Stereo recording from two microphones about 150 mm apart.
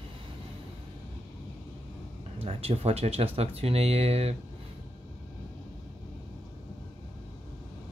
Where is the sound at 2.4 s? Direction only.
40° right (ahead or behind).